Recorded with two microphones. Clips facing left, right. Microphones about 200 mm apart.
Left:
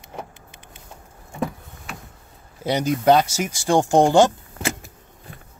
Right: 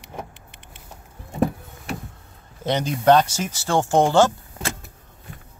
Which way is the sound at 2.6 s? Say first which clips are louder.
Even; 10° left (ahead or behind).